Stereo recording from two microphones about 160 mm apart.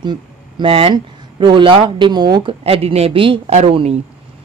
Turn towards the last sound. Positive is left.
turn(degrees=-40)  # may be behind; listen again after turning